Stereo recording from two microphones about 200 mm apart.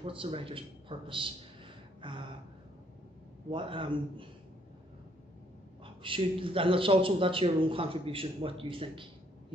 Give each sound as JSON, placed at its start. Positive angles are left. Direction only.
{"t": 0.0, "sound": "speech", "side_deg": -25}
{"t": 2.0, "sound": "gasp", "side_deg": -25}
{"t": 3.4, "sound": "speech", "side_deg": -25}
{"t": 6.0, "sound": "speech", "side_deg": -25}